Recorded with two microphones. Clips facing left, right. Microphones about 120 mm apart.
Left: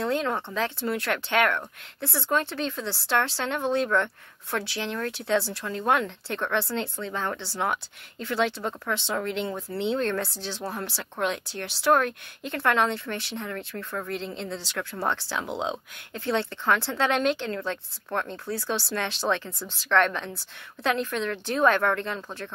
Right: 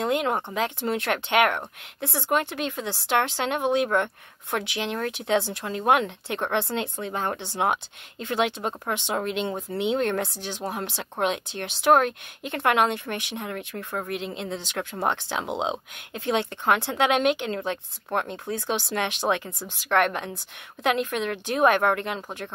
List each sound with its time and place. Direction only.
0.0 s speech: 15° right (ahead or behind)